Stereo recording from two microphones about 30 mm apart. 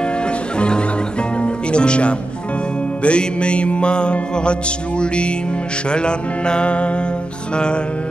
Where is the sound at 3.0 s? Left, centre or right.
Left.